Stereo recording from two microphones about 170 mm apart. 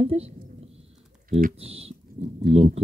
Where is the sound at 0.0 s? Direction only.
35° right (ahead or behind).